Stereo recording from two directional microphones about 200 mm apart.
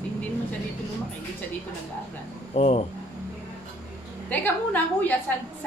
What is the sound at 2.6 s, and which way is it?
Speech, 30° left (ahead or behind).